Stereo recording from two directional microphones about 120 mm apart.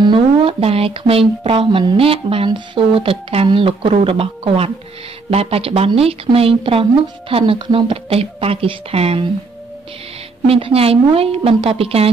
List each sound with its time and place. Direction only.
0.0 s a sound: 40° right (ahead or behind)
0.6 s a woman's voice: 55° right (ahead or behind)
10.4 s a woman's voice: 50° right (ahead or behind)